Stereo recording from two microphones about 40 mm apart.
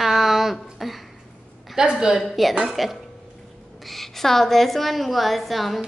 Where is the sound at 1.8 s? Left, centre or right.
Centre.